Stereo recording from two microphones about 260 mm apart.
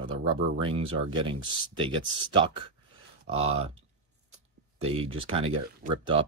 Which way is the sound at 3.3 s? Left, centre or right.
Right.